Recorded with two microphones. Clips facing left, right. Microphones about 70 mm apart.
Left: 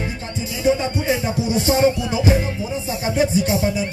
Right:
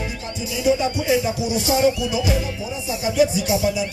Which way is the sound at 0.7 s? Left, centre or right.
Left.